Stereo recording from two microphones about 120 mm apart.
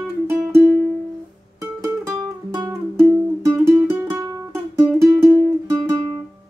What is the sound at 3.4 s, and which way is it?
Music, 20° right (ahead or behind).